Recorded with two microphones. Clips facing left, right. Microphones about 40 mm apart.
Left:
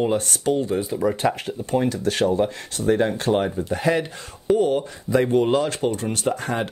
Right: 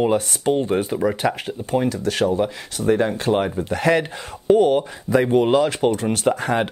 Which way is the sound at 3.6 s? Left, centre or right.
Right.